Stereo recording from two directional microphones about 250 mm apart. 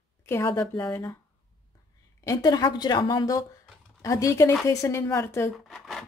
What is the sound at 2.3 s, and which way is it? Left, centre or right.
Speech, centre.